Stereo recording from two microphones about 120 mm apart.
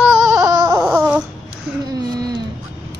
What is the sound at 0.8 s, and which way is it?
Baby cry, 10° right (ahead or behind).